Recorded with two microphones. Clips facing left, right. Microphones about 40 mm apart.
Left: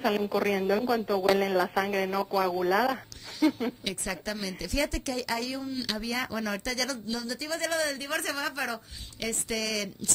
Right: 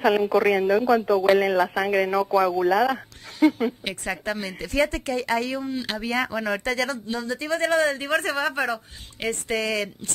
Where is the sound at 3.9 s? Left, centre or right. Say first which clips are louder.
Right 5 dB; right.